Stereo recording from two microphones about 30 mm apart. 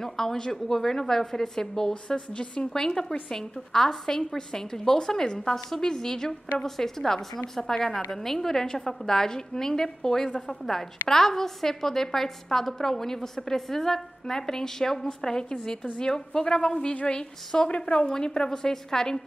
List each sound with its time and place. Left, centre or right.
0.0 s a woman's voice: centre
2.1 s a woman's voice: left
2.7 s a woman's voice: centre
7.9 s a woman's voice: centre
16.0 s a woman's voice: left